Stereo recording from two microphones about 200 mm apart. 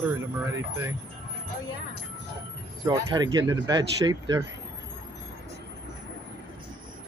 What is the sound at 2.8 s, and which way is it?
Speech, 20° right (ahead or behind).